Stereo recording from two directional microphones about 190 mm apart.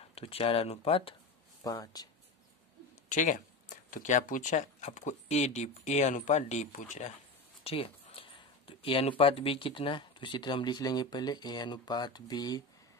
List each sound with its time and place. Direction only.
0.1 s speech: 30° left (ahead or behind)
1.6 s speech: 20° left (ahead or behind)
3.1 s speech: 40° left (ahead or behind); by 12.6 s 20° left (ahead or behind)